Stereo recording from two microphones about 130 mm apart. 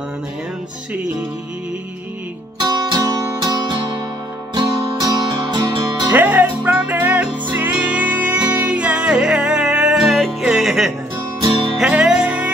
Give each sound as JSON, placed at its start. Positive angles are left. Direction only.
{"t": 2.6, "sound": "music", "side_deg": -30}
{"t": 6.1, "sound": "music", "side_deg": -15}